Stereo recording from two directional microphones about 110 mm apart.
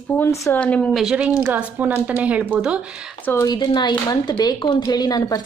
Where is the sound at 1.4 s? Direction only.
15° right (ahead or behind).